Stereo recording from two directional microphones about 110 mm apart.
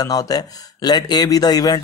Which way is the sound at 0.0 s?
35° left (ahead or behind).